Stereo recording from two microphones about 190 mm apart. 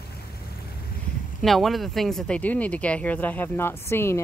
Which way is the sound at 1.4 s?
Centre (ahead or behind).